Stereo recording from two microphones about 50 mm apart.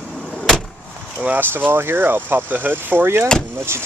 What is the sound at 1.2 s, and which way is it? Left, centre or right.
Speech, right.